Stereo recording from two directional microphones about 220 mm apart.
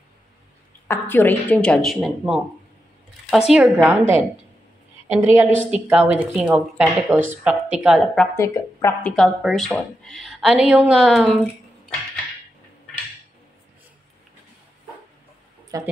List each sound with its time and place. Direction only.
0.8 s speech: 10° left (ahead or behind)
5.2 s speech: 10° right (ahead or behind)
15.7 s a woman's voice: 15° right (ahead or behind)